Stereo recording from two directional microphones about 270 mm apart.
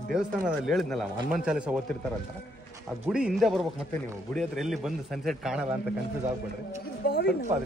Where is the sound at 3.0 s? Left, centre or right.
Centre.